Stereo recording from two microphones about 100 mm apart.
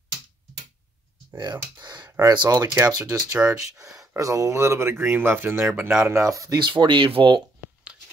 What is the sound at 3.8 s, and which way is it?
Speech, 35° right (ahead or behind).